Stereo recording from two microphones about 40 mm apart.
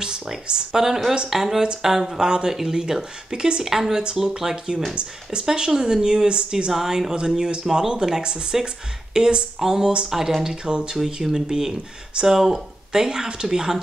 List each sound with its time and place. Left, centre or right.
0.0 s speech: centre
2.2 s speech: centre
4.9 s speech: right
5.5 s speech: centre
6.7 s speech: centre
11.2 s speech: centre